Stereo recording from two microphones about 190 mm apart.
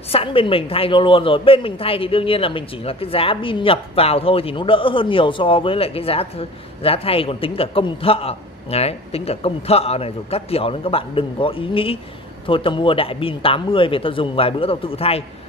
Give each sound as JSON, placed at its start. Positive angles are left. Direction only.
{"t": 0.1, "sound": "a woman's voice", "side_deg": 30}